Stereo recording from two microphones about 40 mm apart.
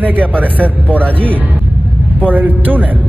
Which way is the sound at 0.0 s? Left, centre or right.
Right.